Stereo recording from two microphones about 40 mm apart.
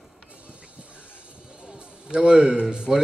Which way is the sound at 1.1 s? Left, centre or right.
Right.